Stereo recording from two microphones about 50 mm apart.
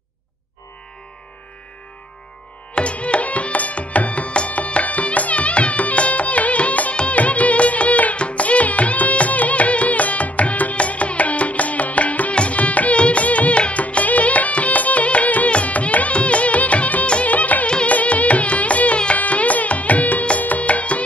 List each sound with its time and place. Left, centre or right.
2.7 s music: left
17.6 s music: left